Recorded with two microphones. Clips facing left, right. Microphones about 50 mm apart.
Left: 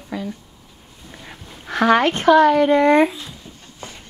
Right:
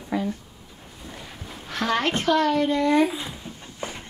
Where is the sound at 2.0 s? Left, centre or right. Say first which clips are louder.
Left 6 dB; left.